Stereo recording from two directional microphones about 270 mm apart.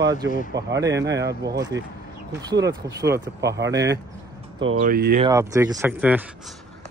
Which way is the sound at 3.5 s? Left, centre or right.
Right.